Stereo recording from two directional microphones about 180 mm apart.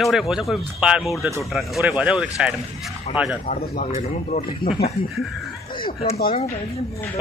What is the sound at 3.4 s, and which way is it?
Speech, 45° left (ahead or behind).